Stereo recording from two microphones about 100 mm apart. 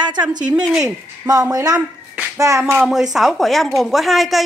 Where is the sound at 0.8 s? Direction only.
35° right (ahead or behind).